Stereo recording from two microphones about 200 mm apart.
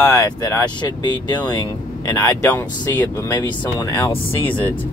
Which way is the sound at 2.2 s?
10° left (ahead or behind).